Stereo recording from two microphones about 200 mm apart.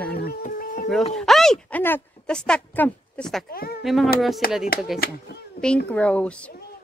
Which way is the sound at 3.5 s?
50° left (ahead or behind).